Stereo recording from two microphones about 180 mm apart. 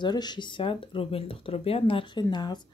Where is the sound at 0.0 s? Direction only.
25° left (ahead or behind).